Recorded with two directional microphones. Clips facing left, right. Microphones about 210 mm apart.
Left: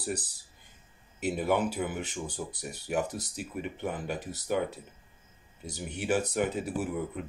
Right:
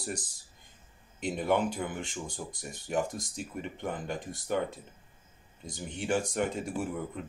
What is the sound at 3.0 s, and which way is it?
Speech, 70° left (ahead or behind).